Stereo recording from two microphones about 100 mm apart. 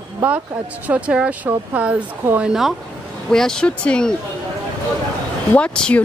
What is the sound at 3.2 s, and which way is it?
Speech, 5° left (ahead or behind).